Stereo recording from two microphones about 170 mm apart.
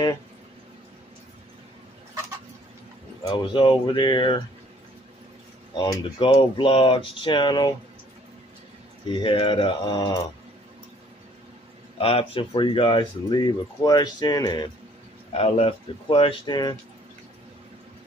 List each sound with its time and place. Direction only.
3.3 s speech: 25° left (ahead or behind)
5.8 s speech: 30° left (ahead or behind)
9.1 s speech: 30° left (ahead or behind)
12.0 s speech: 35° left (ahead or behind)
15.3 s speech: 35° left (ahead or behind)